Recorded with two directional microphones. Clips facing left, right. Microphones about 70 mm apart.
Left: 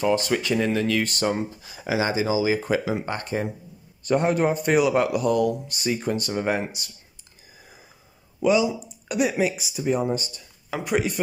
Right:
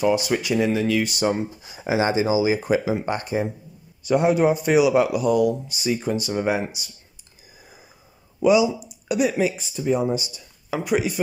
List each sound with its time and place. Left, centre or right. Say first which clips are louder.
0.0 s speech: right 2 dB; centre
1.6 s speech: right 3 dB; right; by 6.9 s centre
8.5 s speech: right 3 dB; centre
9.0 s speech: right 2 dB; centre
10.1 s speech: right 2 dB; centre